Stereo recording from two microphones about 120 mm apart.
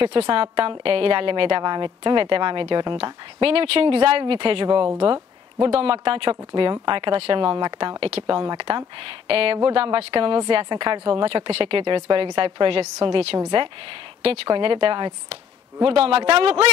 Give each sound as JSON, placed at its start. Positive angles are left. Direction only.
{"t": 0.0, "sound": "speech", "side_deg": -45}